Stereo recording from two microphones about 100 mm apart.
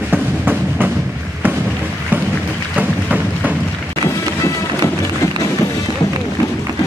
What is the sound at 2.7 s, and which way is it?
Boat, 15° right (ahead or behind).